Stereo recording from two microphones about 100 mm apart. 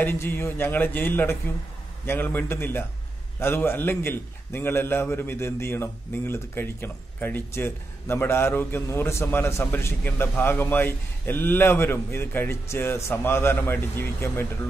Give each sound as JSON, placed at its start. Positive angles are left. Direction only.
{"t": 0.0, "sound": "a man's voice", "side_deg": 25}